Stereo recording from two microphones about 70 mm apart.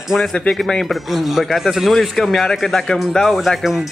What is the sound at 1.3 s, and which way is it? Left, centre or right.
A man's voice, centre.